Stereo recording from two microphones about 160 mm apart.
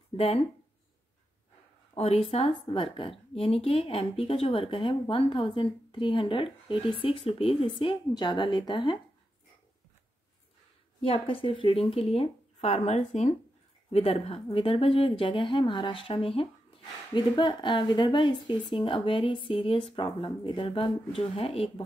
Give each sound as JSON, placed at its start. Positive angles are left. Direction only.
{"t": 2.0, "sound": "a woman's voice", "side_deg": 40}
{"t": 11.0, "sound": "a woman's voice", "side_deg": 35}